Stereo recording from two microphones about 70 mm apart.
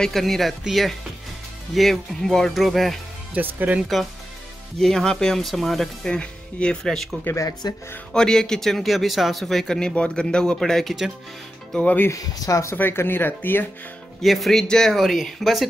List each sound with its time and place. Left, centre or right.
0.0 s speech: centre
3.3 s speech: right
4.7 s speech: centre
6.1 s speech: centre
7.3 s speech: left
8.1 s speech: centre
11.8 s speech: left
12.1 s speech: left
12.7 s speech: left
14.2 s speech: centre